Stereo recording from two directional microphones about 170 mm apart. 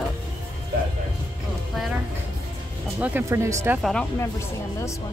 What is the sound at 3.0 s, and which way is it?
Speech, 10° right (ahead or behind).